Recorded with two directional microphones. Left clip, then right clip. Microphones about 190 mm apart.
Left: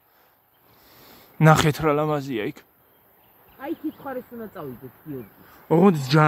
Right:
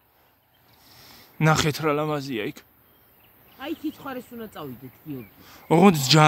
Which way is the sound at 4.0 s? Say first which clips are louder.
Left 2 dB; 40° right (ahead or behind).